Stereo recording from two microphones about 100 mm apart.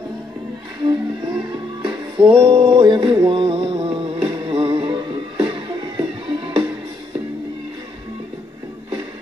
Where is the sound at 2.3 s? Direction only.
60° right (ahead or behind).